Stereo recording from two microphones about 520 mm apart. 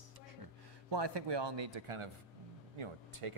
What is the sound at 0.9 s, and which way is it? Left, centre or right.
Speech, right.